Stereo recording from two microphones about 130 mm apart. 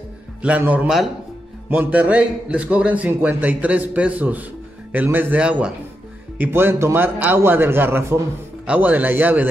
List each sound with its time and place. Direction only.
0.4 s a man's voice: 10° right (ahead or behind)